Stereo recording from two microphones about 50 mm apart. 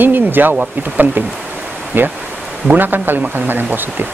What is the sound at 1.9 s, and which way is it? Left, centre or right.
A man's voice, right.